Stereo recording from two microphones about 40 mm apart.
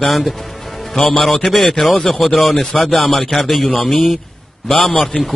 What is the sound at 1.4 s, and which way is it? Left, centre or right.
A man's voice, centre.